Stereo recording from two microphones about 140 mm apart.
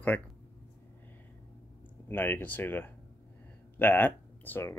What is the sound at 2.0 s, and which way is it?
Speech, 15° left (ahead or behind).